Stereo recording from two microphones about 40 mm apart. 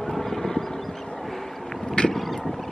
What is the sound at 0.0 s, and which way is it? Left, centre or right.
Vehicle, centre.